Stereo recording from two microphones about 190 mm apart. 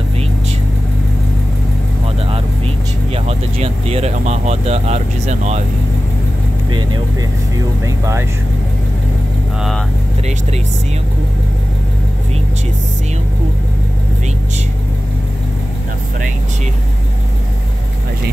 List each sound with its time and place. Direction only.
3.3 s vehicle: 30° right (ahead or behind)
6.7 s speech: 25° right (ahead or behind)
9.6 s speech: centre (ahead or behind)